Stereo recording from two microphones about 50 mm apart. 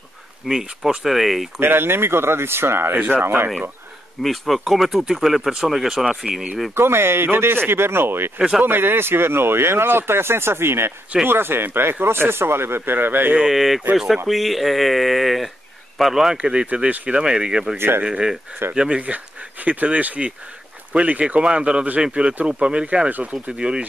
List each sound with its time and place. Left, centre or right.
0.5 s speech: centre
1.6 s speech: right
2.9 s speech: right
4.2 s speech: centre
6.7 s speech: right
8.4 s speech: centre
8.6 s speech: right
13.4 s speech: centre
16.3 s speech: centre
17.7 s speech: right
18.0 s speech: centre